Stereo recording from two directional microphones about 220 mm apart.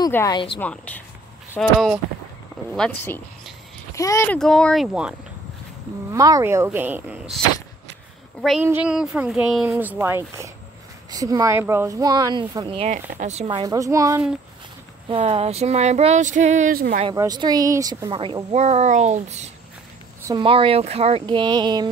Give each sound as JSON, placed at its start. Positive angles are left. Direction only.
{"t": 0.0, "sound": "speech", "side_deg": 15}
{"t": 0.6, "sound": "speech", "side_deg": 5}
{"t": 4.4, "sound": "speech", "side_deg": 5}
{"t": 6.1, "sound": "speech", "side_deg": -15}
{"t": 15.0, "sound": "speech", "side_deg": -25}
{"t": 17.0, "sound": "speech", "side_deg": -15}